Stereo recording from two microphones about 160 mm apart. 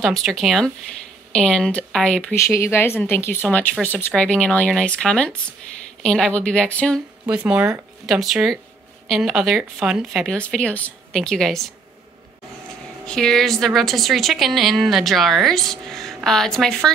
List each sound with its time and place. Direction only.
0.0 s a woman's voice: centre (ahead or behind)
2.4 s a woman's voice: 15° left (ahead or behind)
7.2 s a woman's voice: 5° right (ahead or behind)
10.3 s a woman's voice: 5° left (ahead or behind)
13.0 s a woman's voice: 5° left (ahead or behind)